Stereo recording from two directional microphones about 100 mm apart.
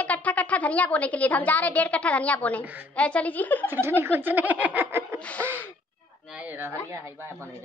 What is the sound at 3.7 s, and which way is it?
Snicker, 20° right (ahead or behind).